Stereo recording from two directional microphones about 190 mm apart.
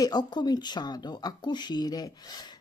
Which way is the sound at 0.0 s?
20° left (ahead or behind).